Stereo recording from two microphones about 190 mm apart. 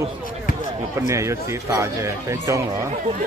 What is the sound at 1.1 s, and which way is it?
Speech, 15° right (ahead or behind).